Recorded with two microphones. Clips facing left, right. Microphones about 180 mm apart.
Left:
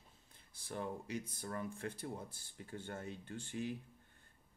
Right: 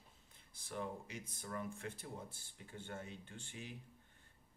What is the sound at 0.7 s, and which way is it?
Speech, 35° left (ahead or behind).